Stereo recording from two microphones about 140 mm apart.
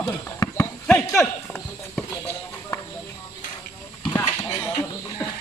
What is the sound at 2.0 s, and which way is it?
Clip-clop, 15° left (ahead or behind).